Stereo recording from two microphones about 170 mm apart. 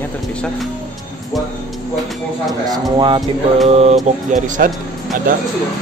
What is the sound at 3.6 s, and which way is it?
Speech, 40° right (ahead or behind).